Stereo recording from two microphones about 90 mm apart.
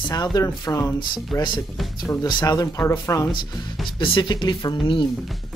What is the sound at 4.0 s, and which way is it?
Speech, 65° left (ahead or behind).